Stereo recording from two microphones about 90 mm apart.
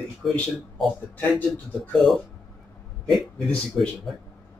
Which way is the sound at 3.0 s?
Centre (ahead or behind).